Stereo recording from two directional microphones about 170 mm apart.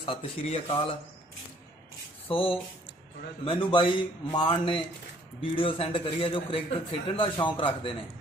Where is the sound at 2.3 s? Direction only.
30° left (ahead or behind).